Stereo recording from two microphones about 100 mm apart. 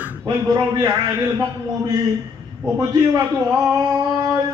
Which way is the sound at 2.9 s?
40° right (ahead or behind).